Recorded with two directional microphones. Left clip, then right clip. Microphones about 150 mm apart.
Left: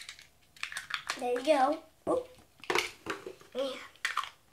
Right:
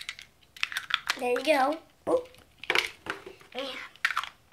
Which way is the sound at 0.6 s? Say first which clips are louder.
Right 8 dB; 25° right (ahead or behind).